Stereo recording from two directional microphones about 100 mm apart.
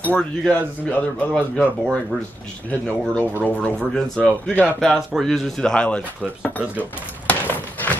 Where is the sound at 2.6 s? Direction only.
15° left (ahead or behind).